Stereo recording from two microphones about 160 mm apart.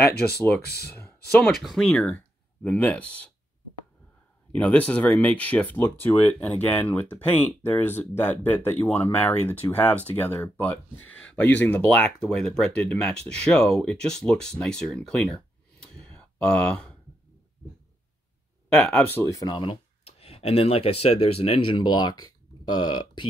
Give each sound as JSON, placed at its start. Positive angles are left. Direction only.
{"t": 0.3, "sound": "speech", "side_deg": 90}
{"t": 0.9, "sound": "speech", "side_deg": 5}
{"t": 4.6, "sound": "speech", "side_deg": 10}
{"t": 18.8, "sound": "speech", "side_deg": 5}
{"t": 19.1, "sound": "speech", "side_deg": 20}